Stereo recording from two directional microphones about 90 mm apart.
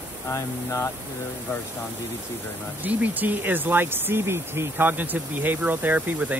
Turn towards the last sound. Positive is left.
turn(degrees=-20)  # may be behind; listen again after turning